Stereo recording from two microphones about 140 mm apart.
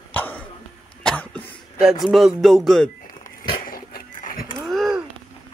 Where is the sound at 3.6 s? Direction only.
90° left.